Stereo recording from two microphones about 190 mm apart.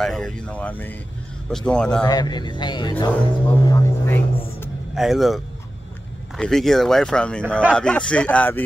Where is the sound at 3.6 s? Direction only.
15° left (ahead or behind).